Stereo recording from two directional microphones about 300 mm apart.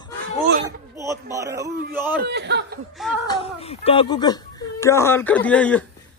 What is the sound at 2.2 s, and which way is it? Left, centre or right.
Speech, right.